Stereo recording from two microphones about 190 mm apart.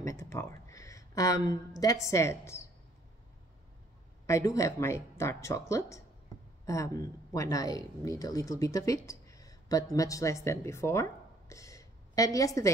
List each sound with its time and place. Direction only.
0.0 s speech: 15° left (ahead or behind)
4.3 s speech: 15° left (ahead or behind)